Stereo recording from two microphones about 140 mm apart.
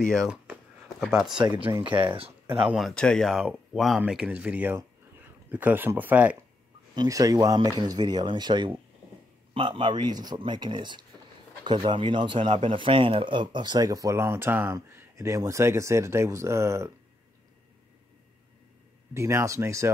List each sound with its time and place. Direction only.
0.0 s speech: 5° left (ahead or behind)
1.4 s speech: 30° right (ahead or behind)
2.4 s speech: 10° right (ahead or behind)
2.9 s speech: 5° left (ahead or behind); by 6.3 s 10° right (ahead or behind)
7.0 s speech: 25° right (ahead or behind)
19.1 s speech: 20° right (ahead or behind)